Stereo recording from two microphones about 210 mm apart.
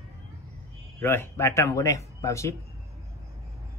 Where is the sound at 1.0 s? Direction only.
10° left (ahead or behind).